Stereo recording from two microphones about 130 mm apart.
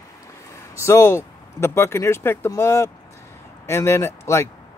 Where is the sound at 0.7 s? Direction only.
20° left (ahead or behind).